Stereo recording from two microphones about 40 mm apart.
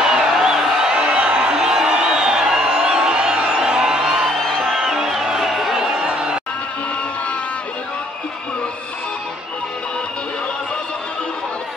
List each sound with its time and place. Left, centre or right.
0.0 s music: centre
4.0 s music: centre
5.8 s a sound: centre